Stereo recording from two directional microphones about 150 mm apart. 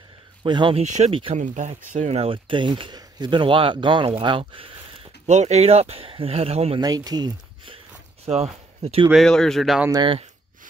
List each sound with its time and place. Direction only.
0.4 s speech: 30° right (ahead or behind)
0.8 s speech: 50° right (ahead or behind); by 4.1 s 30° right (ahead or behind)
4.2 s a sound: 35° right (ahead or behind)
5.3 s speech: 50° right (ahead or behind)
6.8 s speech: 25° right (ahead or behind)
8.8 s speech: 40° right (ahead or behind)
9.1 s speech: 5° left (ahead or behind)